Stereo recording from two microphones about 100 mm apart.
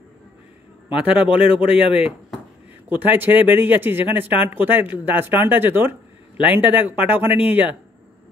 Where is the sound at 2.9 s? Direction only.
20° right (ahead or behind).